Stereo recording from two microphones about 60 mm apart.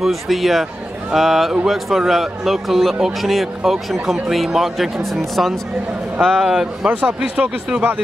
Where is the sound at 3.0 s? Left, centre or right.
Centre.